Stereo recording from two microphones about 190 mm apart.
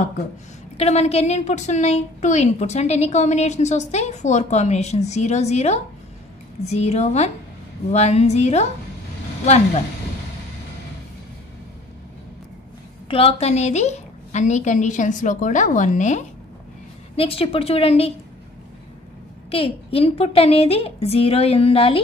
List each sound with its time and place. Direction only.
0.7 s a woman's voice: 35° left (ahead or behind)
13.1 s a woman's voice: 30° left (ahead or behind)
19.5 s a woman's voice: 30° left (ahead or behind)